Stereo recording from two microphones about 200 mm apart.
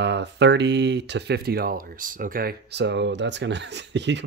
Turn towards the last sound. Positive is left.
turn(degrees=-60)  # may be behind; listen again after turning